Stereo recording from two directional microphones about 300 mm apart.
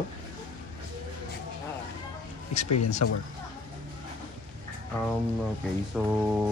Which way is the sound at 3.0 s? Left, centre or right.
Left.